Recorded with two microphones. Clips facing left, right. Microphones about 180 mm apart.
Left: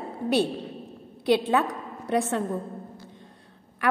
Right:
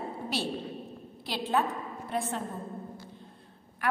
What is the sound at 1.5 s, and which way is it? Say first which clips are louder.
Speech: left 4 dB; 80° left.